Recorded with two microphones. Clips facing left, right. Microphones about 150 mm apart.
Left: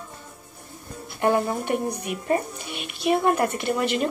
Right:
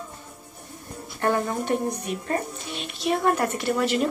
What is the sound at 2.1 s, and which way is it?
Speech, 60° left (ahead or behind).